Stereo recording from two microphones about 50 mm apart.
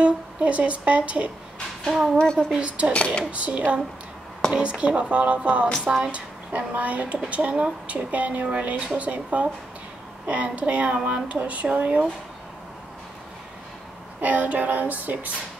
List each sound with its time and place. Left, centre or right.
0.0 s speech: right
1.9 s speech: centre
2.3 s speech: right
5.9 s speech: centre
6.1 s speech: right
14.2 s female singing: right